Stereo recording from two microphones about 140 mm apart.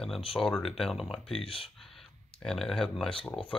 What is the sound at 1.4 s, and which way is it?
Speech, 40° left (ahead or behind).